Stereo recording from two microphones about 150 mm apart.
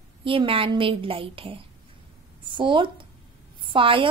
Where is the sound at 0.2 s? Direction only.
35° right (ahead or behind).